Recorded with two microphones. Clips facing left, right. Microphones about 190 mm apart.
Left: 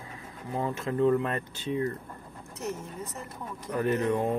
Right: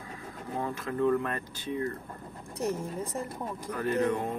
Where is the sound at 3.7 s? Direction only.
20° left (ahead or behind).